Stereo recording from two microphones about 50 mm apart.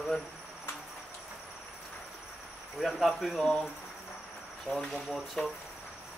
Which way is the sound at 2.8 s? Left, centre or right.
Centre.